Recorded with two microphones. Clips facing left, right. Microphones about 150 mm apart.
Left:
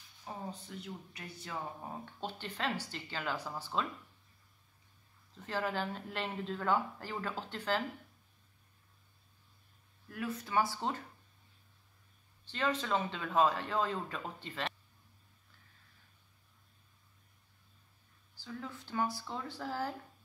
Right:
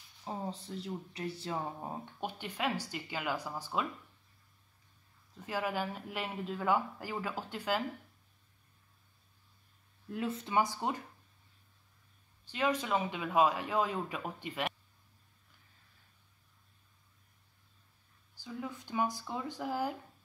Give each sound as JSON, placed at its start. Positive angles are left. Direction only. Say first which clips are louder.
{"t": 0.2, "sound": "speech", "louder": "right 4 dB", "side_deg": -30}
{"t": 2.2, "sound": "speech", "louder": "right 2 dB", "side_deg": -10}
{"t": 5.3, "sound": "speech", "louder": "right 1 dB", "side_deg": -10}
{"t": 10.0, "sound": "speech", "louder": "right 3 dB", "side_deg": -25}
{"t": 12.4, "sound": "speech", "louder": "right 2 dB", "side_deg": -10}
{"t": 18.3, "sound": "speech", "louder": "right 3 dB", "side_deg": -15}